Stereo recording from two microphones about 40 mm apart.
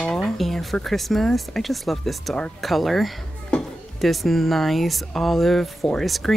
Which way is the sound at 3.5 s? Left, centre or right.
Left.